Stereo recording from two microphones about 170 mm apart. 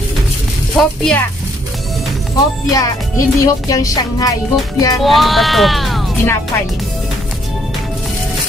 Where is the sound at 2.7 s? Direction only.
20° left (ahead or behind).